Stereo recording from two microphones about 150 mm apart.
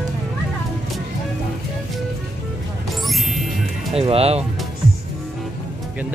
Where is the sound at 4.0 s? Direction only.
40° right (ahead or behind).